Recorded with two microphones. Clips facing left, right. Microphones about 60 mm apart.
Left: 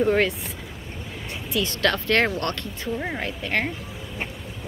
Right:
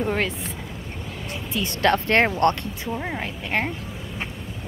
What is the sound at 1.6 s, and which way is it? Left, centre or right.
Speech, right.